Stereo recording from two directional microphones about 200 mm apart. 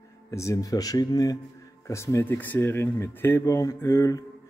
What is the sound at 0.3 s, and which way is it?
Speech, 15° left (ahead or behind).